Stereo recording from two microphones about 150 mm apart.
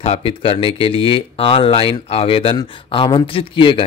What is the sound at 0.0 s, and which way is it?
A man's voice, 40° left (ahead or behind).